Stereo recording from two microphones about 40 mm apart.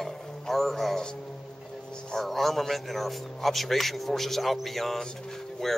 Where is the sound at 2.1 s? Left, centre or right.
Centre.